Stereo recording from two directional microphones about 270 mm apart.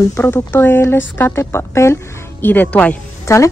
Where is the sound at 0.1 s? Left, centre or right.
Centre.